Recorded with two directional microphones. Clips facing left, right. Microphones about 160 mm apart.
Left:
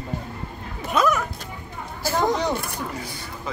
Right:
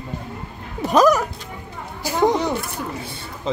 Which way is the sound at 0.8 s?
40° right (ahead or behind).